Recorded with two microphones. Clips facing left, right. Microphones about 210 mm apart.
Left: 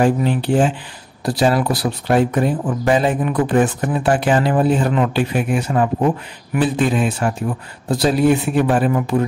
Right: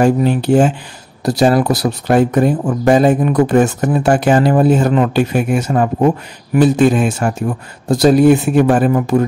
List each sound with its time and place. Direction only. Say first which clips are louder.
0.0 s speech: right 4 dB; 45° right (ahead or behind)